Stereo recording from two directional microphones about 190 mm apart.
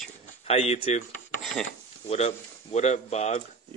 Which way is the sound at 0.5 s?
30° left (ahead or behind).